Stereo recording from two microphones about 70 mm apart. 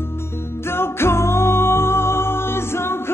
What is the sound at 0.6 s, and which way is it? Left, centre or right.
Music, left.